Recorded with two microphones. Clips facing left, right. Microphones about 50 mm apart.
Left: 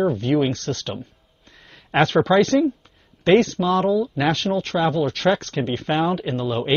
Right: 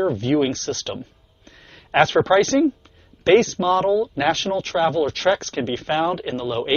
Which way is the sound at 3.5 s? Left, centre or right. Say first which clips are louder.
Right 1 dB; centre.